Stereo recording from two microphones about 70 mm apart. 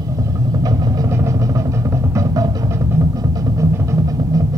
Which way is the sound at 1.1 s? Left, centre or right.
Right.